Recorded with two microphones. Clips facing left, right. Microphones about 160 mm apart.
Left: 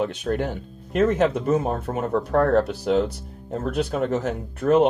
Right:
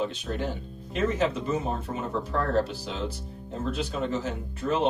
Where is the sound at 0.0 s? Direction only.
60° left (ahead or behind).